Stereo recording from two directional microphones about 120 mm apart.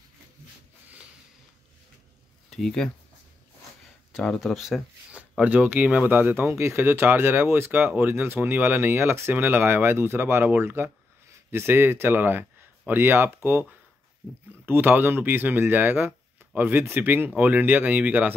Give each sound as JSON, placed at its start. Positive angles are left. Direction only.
{"t": 2.5, "sound": "speech", "side_deg": 5}
{"t": 4.1, "sound": "a sound", "side_deg": 5}
{"t": 5.4, "sound": "speech", "side_deg": -15}
{"t": 6.3, "sound": "speech", "side_deg": -20}